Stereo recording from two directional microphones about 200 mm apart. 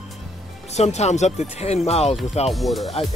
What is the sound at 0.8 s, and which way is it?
Speech, 35° left (ahead or behind).